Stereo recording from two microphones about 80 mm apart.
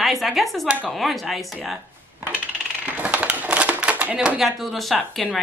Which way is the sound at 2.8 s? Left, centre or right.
Centre.